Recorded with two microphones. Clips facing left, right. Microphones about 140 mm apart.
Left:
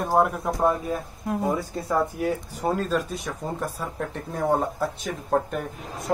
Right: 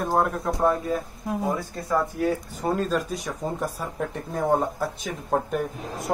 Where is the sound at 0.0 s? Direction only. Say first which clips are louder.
Left 2 dB; 10° left (ahead or behind).